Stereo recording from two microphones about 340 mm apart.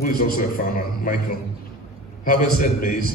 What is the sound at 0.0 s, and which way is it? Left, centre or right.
Speech, left.